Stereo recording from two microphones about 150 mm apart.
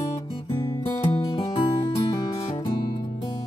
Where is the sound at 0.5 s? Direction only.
30° left (ahead or behind).